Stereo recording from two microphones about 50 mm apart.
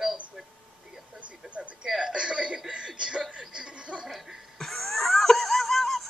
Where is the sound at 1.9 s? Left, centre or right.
Centre.